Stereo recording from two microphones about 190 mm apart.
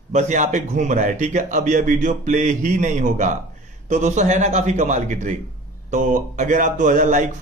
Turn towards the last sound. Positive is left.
turn(degrees=-40)  # may be behind; listen again after turning